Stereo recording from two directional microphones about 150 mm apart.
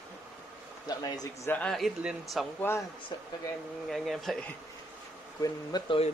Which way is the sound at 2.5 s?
15° left (ahead or behind).